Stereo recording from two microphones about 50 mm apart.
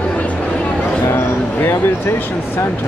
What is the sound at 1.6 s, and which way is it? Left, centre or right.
Speech, left.